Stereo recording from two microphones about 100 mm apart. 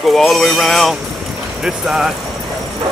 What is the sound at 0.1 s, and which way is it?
Speech, centre (ahead or behind).